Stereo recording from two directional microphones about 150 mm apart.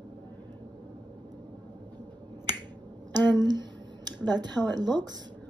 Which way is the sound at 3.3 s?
30° right (ahead or behind).